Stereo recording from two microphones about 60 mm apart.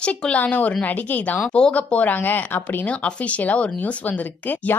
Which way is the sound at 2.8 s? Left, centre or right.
Left.